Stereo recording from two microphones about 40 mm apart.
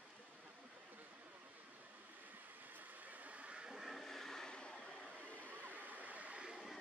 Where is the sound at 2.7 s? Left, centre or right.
Right.